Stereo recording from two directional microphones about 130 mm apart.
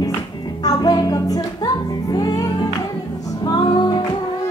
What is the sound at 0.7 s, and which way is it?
Music, 30° left (ahead or behind).